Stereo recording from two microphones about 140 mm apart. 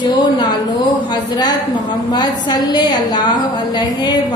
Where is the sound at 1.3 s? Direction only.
30° left (ahead or behind).